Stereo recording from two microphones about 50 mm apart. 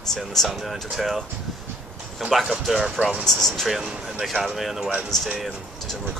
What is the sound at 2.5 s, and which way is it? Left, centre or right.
Speech, centre.